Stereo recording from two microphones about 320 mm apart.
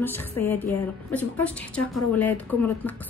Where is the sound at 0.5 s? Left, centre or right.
Centre.